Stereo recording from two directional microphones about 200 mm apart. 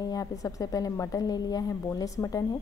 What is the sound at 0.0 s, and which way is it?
A woman's voice, 20° left (ahead or behind).